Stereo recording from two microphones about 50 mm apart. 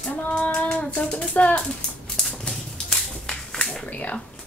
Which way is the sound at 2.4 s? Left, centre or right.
Centre.